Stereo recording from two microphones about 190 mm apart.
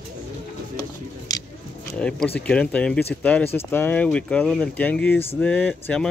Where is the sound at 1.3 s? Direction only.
20° left (ahead or behind).